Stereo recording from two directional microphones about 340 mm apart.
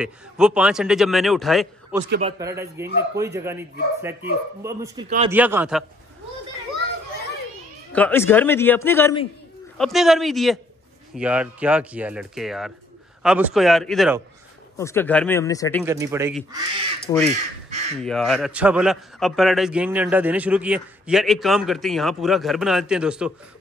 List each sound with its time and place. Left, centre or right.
0.0 s a man's voice: centre
2.0 s a man's voice: right
2.3 s a man's voice: centre
7.9 s a man's voice: centre
9.8 s a man's voice: centre
15.8 s speech: centre
17.1 s a man's voice: centre
18.0 s a man's voice: centre